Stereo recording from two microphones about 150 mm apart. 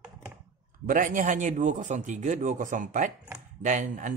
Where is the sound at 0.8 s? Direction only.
60° right (ahead or behind).